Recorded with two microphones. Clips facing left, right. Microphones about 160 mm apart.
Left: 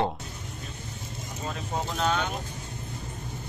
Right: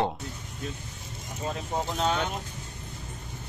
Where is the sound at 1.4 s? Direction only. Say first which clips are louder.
Right 2 dB; 25° right (ahead or behind).